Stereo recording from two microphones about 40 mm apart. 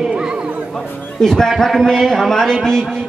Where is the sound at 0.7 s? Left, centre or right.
Centre.